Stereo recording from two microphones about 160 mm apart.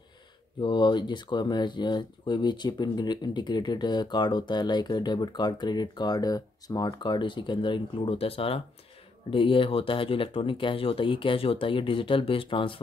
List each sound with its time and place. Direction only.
0.6 s speech: 30° left (ahead or behind)